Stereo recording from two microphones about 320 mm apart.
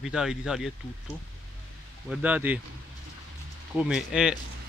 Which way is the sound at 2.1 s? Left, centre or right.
Centre.